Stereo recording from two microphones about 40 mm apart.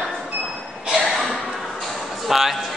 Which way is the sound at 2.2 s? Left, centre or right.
Centre.